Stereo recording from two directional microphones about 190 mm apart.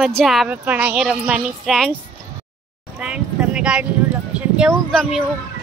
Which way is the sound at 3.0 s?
5° right (ahead or behind).